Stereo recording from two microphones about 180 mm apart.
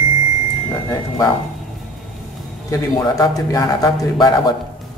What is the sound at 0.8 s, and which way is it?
Speech, 20° left (ahead or behind).